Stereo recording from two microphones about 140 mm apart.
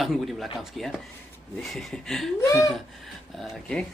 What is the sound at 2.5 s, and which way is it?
Speech, 20° left (ahead or behind).